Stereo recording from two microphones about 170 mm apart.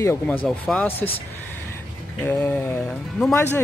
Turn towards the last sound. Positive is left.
turn(degrees=15)  # may be behind; listen again after turning